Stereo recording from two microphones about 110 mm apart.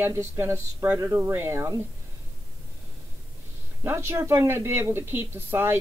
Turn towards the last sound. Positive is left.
turn(degrees=-20)  # may be behind; listen again after turning